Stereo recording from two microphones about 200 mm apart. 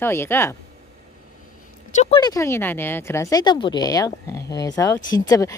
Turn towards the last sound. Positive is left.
turn(degrees=15)  # may be behind; listen again after turning